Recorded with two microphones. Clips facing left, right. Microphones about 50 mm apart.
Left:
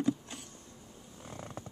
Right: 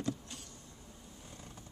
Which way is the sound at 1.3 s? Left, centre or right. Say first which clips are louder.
Left 11 dB; left.